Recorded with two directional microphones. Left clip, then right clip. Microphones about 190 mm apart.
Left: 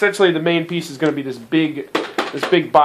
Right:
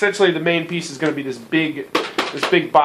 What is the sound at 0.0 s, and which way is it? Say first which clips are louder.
Speech: left 1 dB; 45° left (ahead or behind).